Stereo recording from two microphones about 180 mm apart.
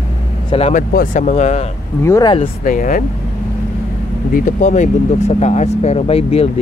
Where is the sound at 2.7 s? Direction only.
45° left (ahead or behind).